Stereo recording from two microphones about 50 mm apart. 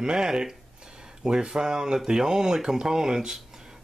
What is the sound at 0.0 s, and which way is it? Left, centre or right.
Speech, centre.